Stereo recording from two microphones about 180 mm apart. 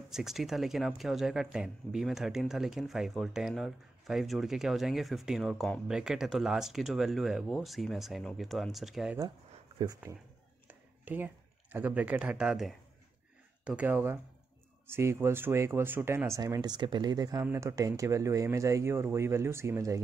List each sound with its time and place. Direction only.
0.1 s speech: centre (ahead or behind)
10.7 s speech: 10° right (ahead or behind)